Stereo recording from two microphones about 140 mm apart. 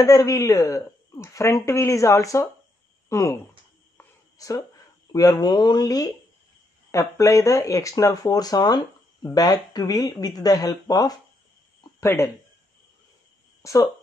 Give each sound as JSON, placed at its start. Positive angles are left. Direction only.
{"t": 0.0, "sound": "speech", "side_deg": 25}
{"t": 4.4, "sound": "speech", "side_deg": 25}
{"t": 13.6, "sound": "a sound", "side_deg": 25}